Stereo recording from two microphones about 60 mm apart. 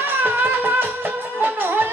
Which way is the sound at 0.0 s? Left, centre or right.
Right.